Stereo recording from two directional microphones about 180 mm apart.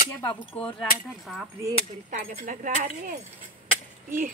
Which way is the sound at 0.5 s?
35° left (ahead or behind).